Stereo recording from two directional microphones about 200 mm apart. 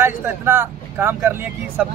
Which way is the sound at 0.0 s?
10° right (ahead or behind).